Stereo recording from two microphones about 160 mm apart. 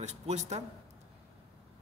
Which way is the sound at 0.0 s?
45° right (ahead or behind).